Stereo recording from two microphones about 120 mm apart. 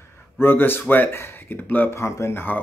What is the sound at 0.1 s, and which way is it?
Speech, 20° left (ahead or behind).